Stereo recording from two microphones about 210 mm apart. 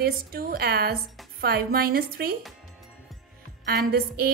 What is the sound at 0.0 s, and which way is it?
A woman's voice, 45° right (ahead or behind).